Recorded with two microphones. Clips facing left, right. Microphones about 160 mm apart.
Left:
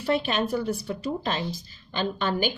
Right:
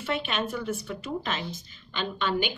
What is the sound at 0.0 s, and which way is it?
Speech, 40° left (ahead or behind).